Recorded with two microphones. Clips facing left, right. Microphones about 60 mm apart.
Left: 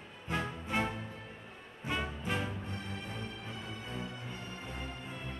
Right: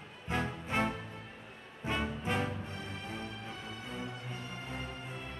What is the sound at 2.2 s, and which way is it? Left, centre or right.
Music, right.